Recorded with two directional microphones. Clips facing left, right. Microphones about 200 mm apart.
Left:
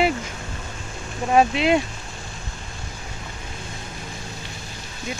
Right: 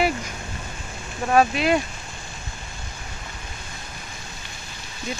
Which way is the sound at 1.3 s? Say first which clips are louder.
Left 1 dB; 20° left (ahead or behind).